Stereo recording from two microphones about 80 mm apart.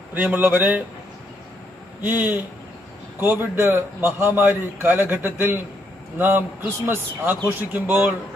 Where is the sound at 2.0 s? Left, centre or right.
Right.